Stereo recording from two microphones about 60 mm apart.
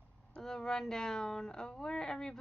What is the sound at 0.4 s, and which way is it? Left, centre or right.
Speech, centre.